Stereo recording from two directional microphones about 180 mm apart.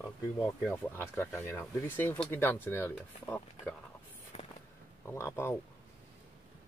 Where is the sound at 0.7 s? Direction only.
15° left (ahead or behind).